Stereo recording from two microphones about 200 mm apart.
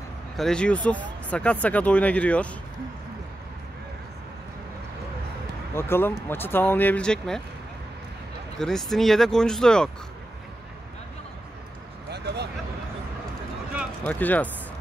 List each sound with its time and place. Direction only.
0.4 s speech: 5° left (ahead or behind)
5.8 s speech: 10° left (ahead or behind)
8.5 s speech: centre (ahead or behind)
14.0 s speech: 10° left (ahead or behind)